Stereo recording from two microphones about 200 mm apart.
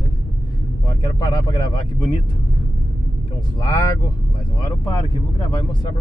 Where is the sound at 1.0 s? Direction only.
20° left (ahead or behind).